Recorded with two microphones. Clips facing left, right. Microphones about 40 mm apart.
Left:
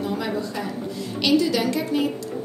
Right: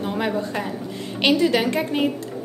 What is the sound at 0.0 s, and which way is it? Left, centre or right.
A woman's voice, right.